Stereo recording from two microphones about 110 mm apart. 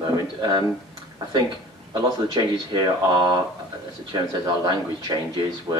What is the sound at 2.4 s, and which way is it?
Speech, 45° right (ahead or behind).